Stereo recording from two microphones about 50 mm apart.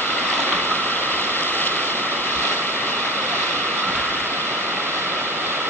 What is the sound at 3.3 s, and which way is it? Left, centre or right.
Waves, right.